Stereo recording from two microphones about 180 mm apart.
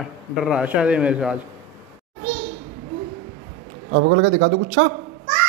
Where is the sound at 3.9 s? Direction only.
90° right.